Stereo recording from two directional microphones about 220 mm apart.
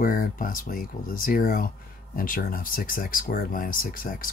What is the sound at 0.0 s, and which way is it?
Speech, 40° left (ahead or behind).